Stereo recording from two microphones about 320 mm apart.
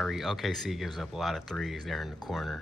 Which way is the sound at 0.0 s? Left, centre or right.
Centre.